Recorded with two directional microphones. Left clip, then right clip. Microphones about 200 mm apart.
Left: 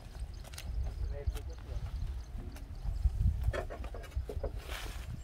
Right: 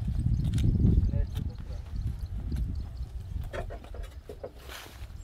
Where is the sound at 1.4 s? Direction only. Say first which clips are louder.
Right 5 dB; 10° left (ahead or behind).